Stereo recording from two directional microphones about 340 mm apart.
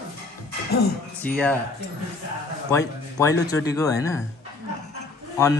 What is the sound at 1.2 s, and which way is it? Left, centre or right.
Speech, centre.